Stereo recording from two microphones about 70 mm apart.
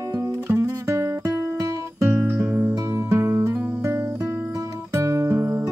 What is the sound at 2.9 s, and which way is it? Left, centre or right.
Music, right.